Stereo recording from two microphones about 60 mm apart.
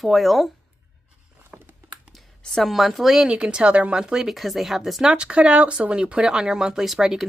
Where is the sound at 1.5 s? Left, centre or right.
Centre.